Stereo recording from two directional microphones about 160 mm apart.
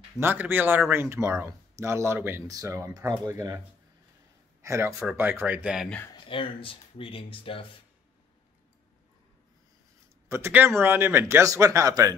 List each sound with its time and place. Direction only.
0.2 s speech: 15° right (ahead or behind)
6.1 s speech: 35° left (ahead or behind)
10.2 s speech: 15° right (ahead or behind)